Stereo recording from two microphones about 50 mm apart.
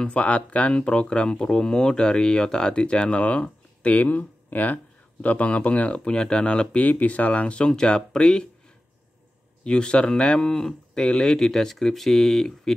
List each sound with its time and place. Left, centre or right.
0.0 s speech: left
6.8 s speech: left; by 8.5 s centre
9.7 s speech: centre